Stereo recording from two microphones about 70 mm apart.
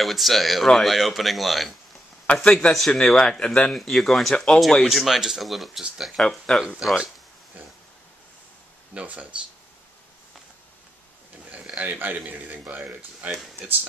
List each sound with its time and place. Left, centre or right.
0.0 s speech: centre
2.3 s speech: centre
6.1 s speech: centre
8.9 s speech: right
11.7 s speech: right